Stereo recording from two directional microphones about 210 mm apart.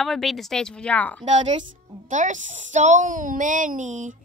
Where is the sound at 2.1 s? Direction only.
35° right (ahead or behind).